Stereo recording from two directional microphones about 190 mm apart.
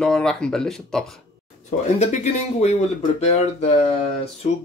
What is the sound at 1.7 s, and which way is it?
Speech, 35° left (ahead or behind).